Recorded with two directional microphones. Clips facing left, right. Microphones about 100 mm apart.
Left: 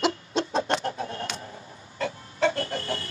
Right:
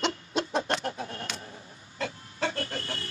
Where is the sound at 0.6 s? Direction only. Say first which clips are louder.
Left 3 dB; 30° left (ahead or behind).